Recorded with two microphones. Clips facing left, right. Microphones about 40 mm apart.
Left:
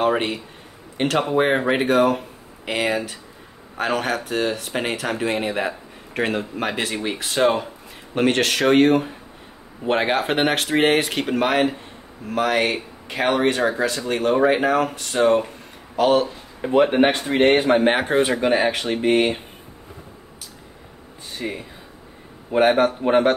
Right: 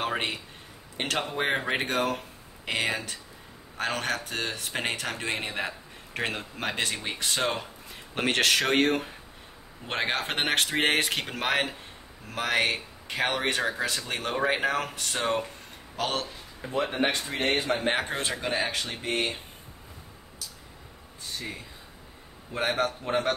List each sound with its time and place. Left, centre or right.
0.0 s speech: centre
16.7 s a man's voice: left
21.4 s speech: left